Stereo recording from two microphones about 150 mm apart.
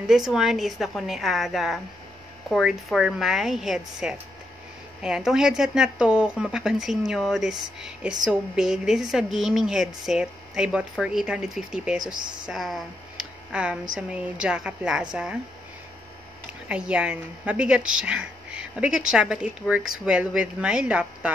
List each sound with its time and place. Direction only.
0.0 s a woman's voice: centre (ahead or behind)
12.0 s speech: 30° right (ahead or behind)
12.4 s a woman's voice: centre (ahead or behind)
16.6 s a woman's voice: 5° right (ahead or behind)